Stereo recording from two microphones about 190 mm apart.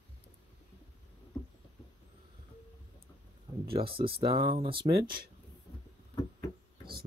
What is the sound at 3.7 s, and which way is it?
Speech, 30° right (ahead or behind).